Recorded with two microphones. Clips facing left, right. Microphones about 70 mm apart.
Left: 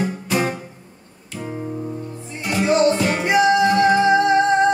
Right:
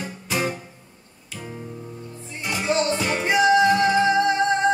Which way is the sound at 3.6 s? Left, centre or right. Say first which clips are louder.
Left 3 dB; left.